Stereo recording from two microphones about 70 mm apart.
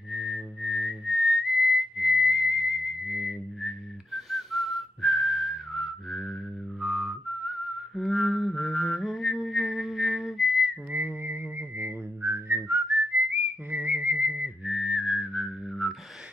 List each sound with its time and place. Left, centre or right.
0.1 s whistling: centre
8.0 s mantra: centre
10.9 s whistling: right
14.6 s whistling: centre